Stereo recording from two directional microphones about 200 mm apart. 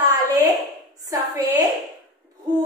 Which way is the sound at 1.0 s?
15° right (ahead or behind).